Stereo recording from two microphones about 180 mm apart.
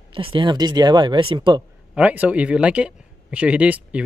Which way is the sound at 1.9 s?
5° right (ahead or behind).